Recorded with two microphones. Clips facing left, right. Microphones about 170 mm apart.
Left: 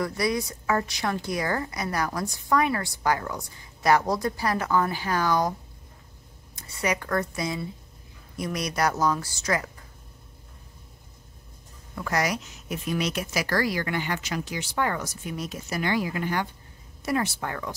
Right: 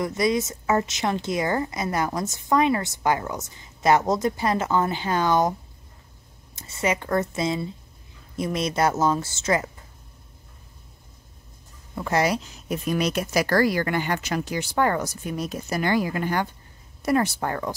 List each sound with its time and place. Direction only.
0.0 s a woman's voice: 20° right (ahead or behind)
6.5 s a woman's voice: 25° right (ahead or behind)
11.9 s speech: 25° right (ahead or behind)